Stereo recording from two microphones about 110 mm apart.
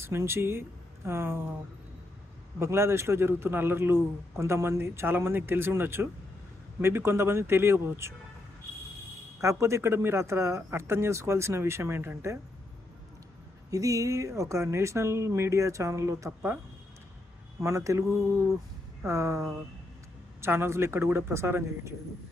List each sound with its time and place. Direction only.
0.0 s speech: 25° right (ahead or behind)
2.6 s a man's voice: 25° right (ahead or behind)
9.4 s a man's voice: 25° right (ahead or behind)
13.7 s a man's voice: 30° right (ahead or behind)
17.6 s a man's voice: 25° right (ahead or behind)